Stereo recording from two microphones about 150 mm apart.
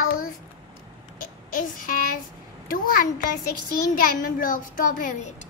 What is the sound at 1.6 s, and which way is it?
A woman's voice, 65° left (ahead or behind).